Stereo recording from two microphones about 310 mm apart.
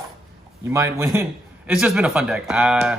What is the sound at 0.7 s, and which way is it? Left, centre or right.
Speech, centre.